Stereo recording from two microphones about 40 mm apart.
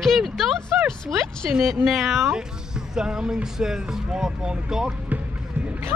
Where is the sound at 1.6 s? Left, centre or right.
Centre.